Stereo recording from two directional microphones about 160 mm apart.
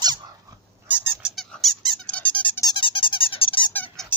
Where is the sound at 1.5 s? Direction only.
5° left (ahead or behind).